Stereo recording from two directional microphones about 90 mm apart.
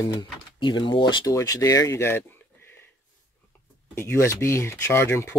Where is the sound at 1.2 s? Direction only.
40° left (ahead or behind).